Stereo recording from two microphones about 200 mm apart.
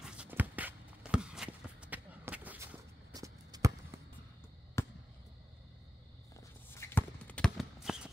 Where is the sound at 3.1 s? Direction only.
15° right (ahead or behind).